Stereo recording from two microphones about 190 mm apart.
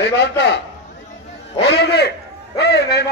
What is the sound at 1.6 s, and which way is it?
A man's voice, 60° left (ahead or behind).